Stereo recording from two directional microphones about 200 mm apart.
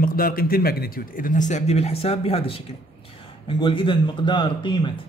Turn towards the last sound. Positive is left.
turn(degrees=25)  # may be behind; listen again after turning